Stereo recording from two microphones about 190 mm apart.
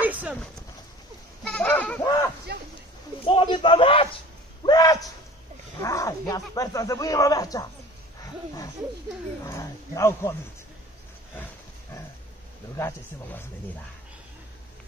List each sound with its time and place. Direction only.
0.0 s clip-clop: 10° right (ahead or behind)
1.4 s goat: 5° left (ahead or behind)
2.0 s a sound: 15° left (ahead or behind)
3.3 s speech: 25° left (ahead or behind)
4.6 s a sound: 20° left (ahead or behind)
5.8 s speech: 15° left (ahead or behind)
9.4 s speech: 15° left (ahead or behind)
12.7 s speech: 15° left (ahead or behind)